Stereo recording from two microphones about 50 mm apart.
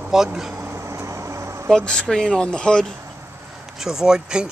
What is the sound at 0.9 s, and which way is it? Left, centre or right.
Vehicle, right.